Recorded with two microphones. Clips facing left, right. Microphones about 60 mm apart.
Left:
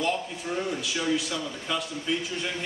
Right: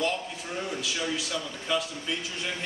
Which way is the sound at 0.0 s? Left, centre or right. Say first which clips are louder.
Left 1 dB; centre.